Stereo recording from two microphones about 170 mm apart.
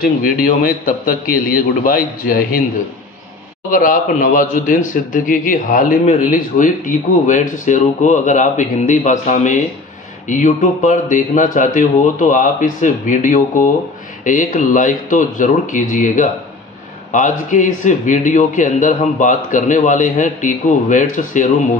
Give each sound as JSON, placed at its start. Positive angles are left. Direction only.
{"t": 0.0, "sound": "a man's voice", "side_deg": 55}
{"t": 3.7, "sound": "a man's voice", "side_deg": 50}